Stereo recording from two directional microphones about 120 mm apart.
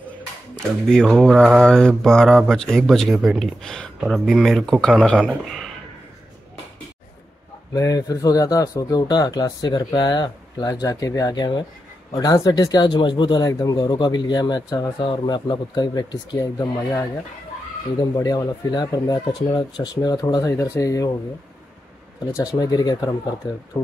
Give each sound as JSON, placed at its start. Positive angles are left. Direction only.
{"t": 0.6, "sound": "speech", "side_deg": 5}
{"t": 7.7, "sound": "speech", "side_deg": 30}
{"t": 18.1, "sound": "speech", "side_deg": 30}
{"t": 22.3, "sound": "speech", "side_deg": 30}